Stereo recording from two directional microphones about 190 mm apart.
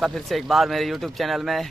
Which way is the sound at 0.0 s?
Centre (ahead or behind).